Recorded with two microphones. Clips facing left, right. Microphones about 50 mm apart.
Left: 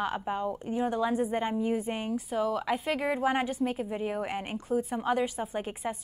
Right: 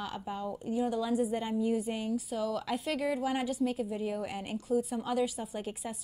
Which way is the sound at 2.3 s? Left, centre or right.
Left.